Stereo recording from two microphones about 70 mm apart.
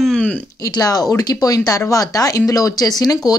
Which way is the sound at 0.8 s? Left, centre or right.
Left.